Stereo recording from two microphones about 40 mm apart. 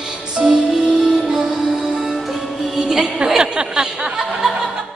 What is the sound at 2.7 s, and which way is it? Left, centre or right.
Music, centre.